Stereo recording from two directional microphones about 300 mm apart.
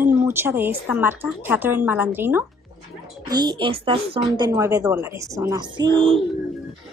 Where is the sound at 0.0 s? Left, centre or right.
Centre.